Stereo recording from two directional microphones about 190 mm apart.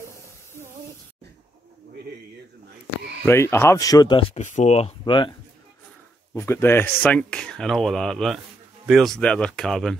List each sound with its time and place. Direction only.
3.3 s speech: 15° left (ahead or behind)
6.3 s speech: 15° left (ahead or behind)